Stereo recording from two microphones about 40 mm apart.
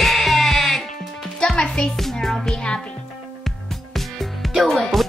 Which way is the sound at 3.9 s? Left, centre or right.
Centre.